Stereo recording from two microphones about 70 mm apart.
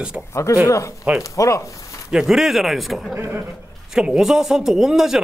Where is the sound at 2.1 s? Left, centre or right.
Centre.